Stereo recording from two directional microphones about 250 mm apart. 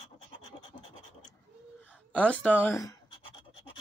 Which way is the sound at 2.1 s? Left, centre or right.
Centre.